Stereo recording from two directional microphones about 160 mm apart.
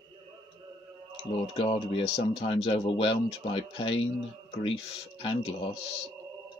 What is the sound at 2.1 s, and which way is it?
Speech, 40° left (ahead or behind).